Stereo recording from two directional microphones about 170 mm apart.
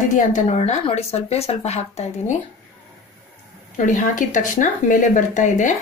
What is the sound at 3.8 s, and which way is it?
Speech, 50° left (ahead or behind).